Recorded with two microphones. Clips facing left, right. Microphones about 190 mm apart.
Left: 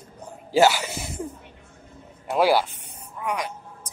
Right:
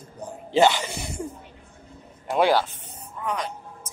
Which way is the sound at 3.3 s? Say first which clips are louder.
Left 1 dB; 10° left (ahead or behind).